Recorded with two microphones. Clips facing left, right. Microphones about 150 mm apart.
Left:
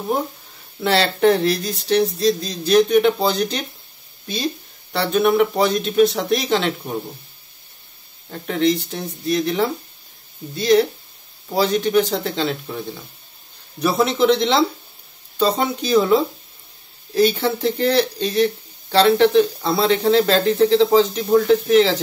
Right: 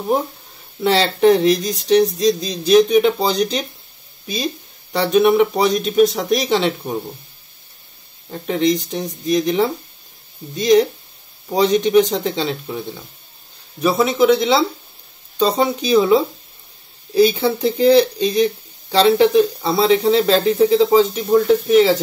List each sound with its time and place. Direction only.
0.8 s speech: 10° right (ahead or behind)
4.9 s speech: 10° right (ahead or behind)
8.3 s speech: 10° right (ahead or behind)